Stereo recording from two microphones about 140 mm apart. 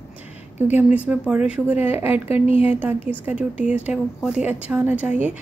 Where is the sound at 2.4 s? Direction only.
45° left (ahead or behind).